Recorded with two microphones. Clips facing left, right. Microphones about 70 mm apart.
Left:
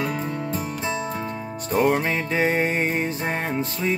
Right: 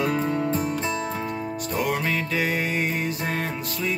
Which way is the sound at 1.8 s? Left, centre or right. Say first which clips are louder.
Left 5 dB; left.